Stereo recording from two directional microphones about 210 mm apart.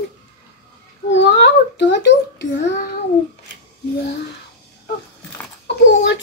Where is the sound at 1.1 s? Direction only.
55° left (ahead or behind).